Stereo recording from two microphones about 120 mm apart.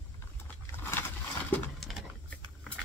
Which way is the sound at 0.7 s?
20° left (ahead or behind).